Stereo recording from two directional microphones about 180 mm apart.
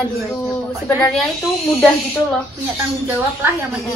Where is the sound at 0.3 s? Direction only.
5° left (ahead or behind).